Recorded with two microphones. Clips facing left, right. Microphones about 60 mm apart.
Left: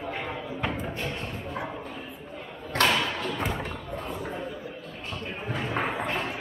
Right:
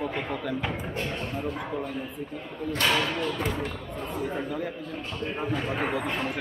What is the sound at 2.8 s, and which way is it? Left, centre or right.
Speech, left.